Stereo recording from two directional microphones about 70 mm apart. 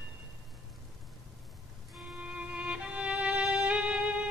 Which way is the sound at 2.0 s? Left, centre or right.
Centre.